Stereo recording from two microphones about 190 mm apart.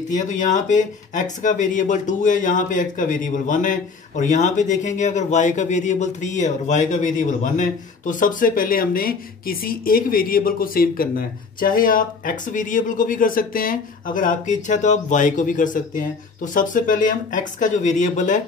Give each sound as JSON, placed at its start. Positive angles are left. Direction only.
{"t": 0.1, "sound": "speech", "side_deg": 40}